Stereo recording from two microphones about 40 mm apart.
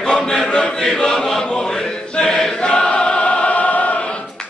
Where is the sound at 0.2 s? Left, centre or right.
Centre.